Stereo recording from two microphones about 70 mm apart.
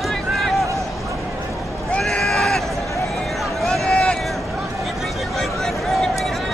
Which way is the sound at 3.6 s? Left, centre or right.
Centre.